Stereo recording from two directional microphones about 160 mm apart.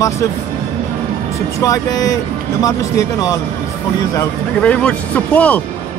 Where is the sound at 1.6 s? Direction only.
20° left (ahead or behind).